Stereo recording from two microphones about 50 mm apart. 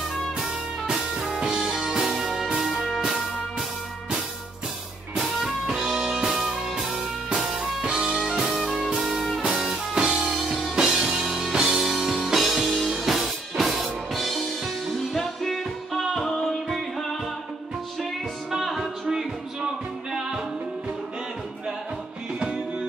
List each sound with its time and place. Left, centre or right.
1.3 s music: centre
5.4 s music: centre
9.9 s music: centre
18.5 s music: centre